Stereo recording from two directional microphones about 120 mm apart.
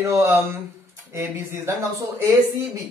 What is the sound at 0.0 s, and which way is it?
Speech, 20° right (ahead or behind).